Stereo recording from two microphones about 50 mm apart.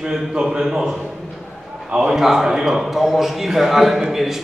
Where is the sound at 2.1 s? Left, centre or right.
Centre.